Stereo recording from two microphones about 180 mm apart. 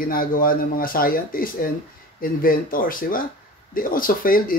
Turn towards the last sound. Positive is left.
turn(degrees=50)  # may be behind; listen again after turning